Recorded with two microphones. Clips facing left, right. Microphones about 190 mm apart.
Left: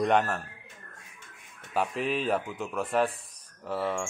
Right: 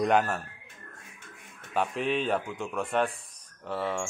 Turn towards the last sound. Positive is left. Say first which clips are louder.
# left 1 dB
turn(degrees=0)  # may be behind; listen again after turning